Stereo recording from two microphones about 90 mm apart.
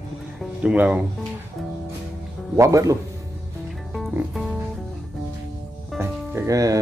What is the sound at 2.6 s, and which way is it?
Speech, 35° right (ahead or behind).